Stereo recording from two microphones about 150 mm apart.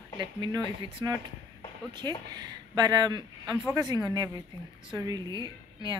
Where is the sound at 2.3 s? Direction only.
25° right (ahead or behind).